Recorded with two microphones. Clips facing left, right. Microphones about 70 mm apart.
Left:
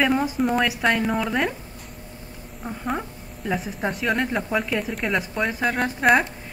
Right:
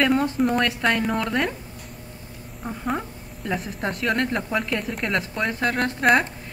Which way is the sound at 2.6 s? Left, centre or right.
Centre.